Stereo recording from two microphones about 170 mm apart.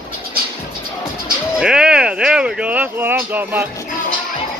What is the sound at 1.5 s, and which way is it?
Speech, 5° right (ahead or behind).